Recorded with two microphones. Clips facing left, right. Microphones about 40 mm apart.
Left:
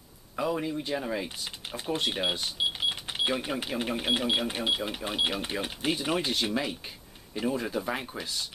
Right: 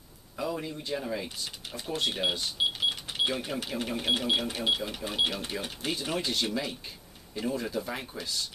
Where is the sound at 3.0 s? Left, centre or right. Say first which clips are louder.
Left 1 dB; centre.